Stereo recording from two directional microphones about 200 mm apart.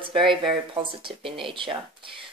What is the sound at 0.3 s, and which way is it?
Speech, 25° right (ahead or behind).